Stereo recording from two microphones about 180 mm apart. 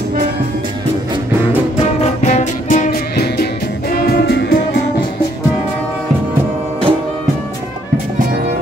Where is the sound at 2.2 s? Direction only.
45° left (ahead or behind); by 4.6 s 65° left (ahead or behind).